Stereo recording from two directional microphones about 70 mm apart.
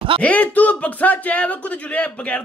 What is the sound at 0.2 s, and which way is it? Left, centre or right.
Speech, left.